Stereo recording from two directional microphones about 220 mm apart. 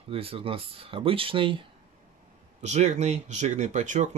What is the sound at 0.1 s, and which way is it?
Speech, 25° right (ahead or behind).